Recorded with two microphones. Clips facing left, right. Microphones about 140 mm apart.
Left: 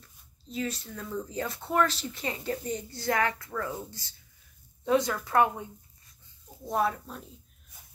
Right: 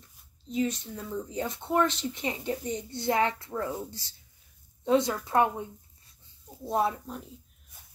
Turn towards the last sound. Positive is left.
turn(degrees=-15)  # may be behind; listen again after turning